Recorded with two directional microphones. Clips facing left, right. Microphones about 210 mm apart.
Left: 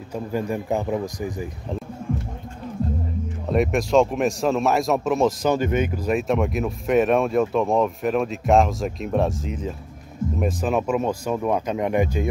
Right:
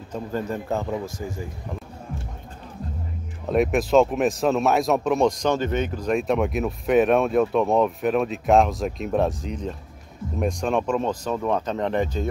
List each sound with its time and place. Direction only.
0.1 s speech: 10° left (ahead or behind)
3.4 s speech: centre (ahead or behind)